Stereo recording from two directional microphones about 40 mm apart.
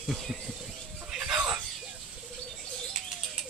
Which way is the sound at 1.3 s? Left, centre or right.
Right.